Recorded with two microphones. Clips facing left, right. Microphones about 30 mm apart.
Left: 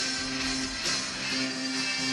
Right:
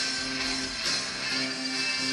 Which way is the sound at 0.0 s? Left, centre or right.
Centre.